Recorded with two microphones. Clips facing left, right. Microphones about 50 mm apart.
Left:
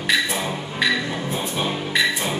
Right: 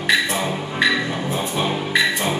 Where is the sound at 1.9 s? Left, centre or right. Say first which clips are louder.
Right 1 dB; centre.